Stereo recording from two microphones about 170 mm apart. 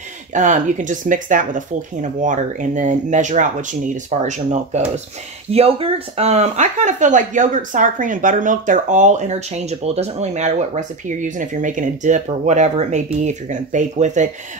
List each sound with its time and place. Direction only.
0.3 s speech: 45° right (ahead or behind)